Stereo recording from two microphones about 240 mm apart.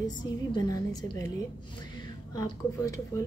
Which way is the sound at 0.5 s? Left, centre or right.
Centre.